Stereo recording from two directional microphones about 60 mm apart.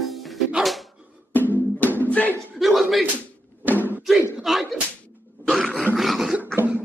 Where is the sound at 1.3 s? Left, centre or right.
Left.